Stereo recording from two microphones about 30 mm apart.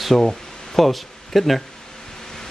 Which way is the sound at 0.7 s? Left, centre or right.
Centre.